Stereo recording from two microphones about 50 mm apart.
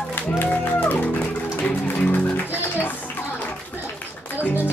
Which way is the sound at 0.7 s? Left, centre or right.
Left.